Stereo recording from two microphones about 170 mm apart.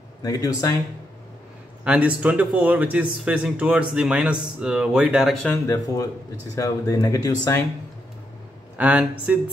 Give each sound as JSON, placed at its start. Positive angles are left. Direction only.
{"t": 0.2, "sound": "speech", "side_deg": 20}
{"t": 1.9, "sound": "speech", "side_deg": -10}
{"t": 6.5, "sound": "speech", "side_deg": 20}
{"t": 8.7, "sound": "speech", "side_deg": -10}